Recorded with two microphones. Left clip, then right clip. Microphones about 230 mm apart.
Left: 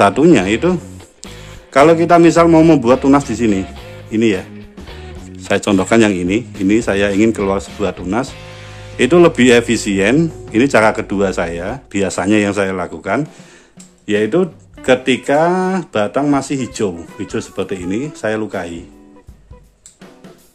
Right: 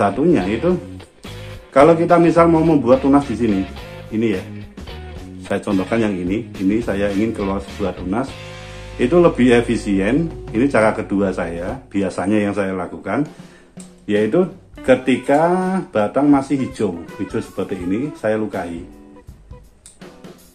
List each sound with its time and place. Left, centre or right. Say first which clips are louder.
0.0 s speech: left 6 dB; left
3.5 s music: left 1 dB; centre
4.1 s speech: left 5 dB; left
5.5 s speech: left 6 dB; left
8.3 s speech: left 1 dB; centre
8.9 s speech: left 4 dB; left